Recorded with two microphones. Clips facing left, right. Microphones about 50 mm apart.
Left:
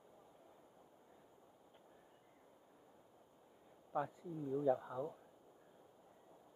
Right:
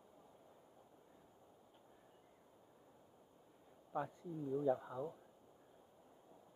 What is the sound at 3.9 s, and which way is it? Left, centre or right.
Speech, centre.